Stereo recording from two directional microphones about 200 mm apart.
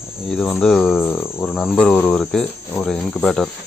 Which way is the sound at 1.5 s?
Centre (ahead or behind).